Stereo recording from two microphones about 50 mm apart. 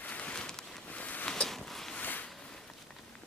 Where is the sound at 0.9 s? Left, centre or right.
Left.